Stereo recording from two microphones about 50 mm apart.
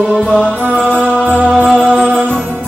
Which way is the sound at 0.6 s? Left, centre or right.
Right.